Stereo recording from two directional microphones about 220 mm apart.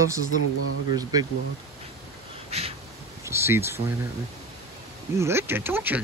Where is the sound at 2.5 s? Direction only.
25° right (ahead or behind).